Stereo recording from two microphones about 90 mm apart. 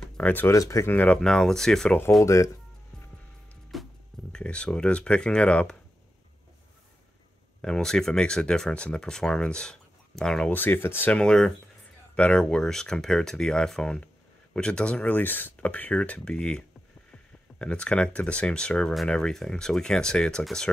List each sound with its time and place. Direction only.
0.0 s a sound: 20° left (ahead or behind)
0.5 s speech: 35° left (ahead or behind)
0.9 s speech: 15° left (ahead or behind)
2.2 s music: 35° left (ahead or behind)
3.7 s music: centre (ahead or behind)
4.3 s speech: 10° left (ahead or behind)
7.6 s speech: 5° left (ahead or behind)
10.6 s speech: 25° left (ahead or behind)
11.1 s speech: 10° left (ahead or behind)